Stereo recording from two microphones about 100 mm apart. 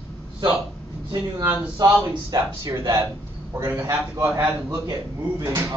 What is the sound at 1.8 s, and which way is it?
Speech, 30° right (ahead or behind).